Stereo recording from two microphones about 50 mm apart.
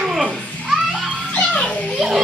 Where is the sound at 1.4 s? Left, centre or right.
Left.